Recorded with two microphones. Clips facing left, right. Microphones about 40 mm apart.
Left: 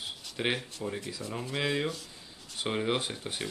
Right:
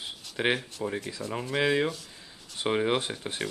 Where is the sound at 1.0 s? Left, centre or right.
Right.